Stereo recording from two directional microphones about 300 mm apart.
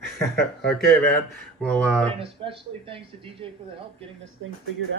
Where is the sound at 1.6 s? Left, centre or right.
Centre.